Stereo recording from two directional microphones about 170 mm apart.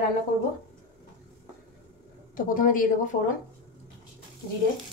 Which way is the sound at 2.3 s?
55° left (ahead or behind).